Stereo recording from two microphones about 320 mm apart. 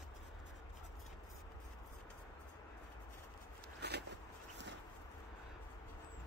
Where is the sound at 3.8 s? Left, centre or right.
Right.